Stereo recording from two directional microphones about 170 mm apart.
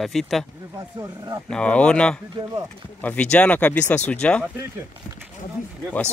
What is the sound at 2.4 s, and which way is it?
Speech, 25° right (ahead or behind).